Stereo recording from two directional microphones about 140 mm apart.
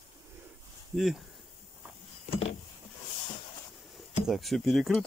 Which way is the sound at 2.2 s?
40° left (ahead or behind).